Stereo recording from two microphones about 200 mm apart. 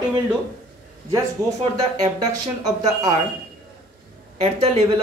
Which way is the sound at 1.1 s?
15° right (ahead or behind).